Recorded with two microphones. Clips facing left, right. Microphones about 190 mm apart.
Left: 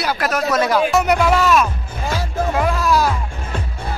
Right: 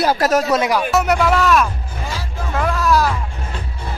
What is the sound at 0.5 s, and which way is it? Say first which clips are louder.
Speech: even; 20° right (ahead or behind).